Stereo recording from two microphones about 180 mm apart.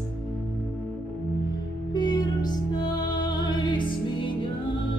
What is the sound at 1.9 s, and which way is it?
Music, 25° left (ahead or behind).